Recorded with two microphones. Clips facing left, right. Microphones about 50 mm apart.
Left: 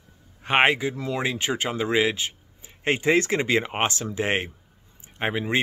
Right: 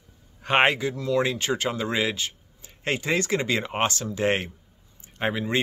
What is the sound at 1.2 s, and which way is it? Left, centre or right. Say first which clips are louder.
Speech: right 1 dB; centre.